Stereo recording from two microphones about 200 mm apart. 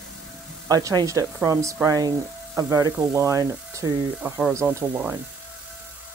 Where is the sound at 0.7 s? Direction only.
20° right (ahead or behind).